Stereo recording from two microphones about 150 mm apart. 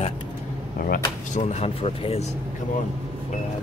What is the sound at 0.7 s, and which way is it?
Speech, 75° left (ahead or behind).